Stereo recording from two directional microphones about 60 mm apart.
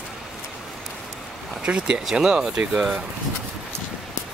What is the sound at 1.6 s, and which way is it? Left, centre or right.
Speech, centre.